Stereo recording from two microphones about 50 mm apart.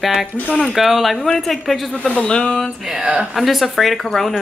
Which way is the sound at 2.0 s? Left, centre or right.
Centre.